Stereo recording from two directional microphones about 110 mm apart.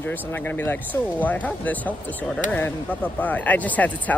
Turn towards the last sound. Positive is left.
turn(degrees=15)  # may be behind; listen again after turning